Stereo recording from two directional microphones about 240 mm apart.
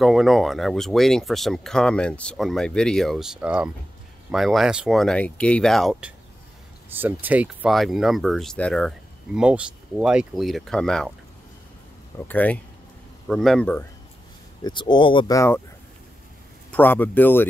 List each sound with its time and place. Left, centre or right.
0.0 s speech: centre
12.3 s speech: centre
14.6 s speech: centre
16.7 s speech: centre